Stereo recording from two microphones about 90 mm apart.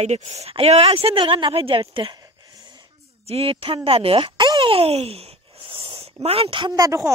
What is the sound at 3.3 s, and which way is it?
Speech, 90° right.